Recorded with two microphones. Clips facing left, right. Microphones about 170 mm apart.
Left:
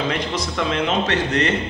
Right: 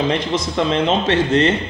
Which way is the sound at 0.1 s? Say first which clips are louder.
Right 4 dB; 25° right (ahead or behind).